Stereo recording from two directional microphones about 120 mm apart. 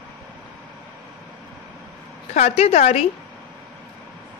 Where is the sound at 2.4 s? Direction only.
65° left (ahead or behind).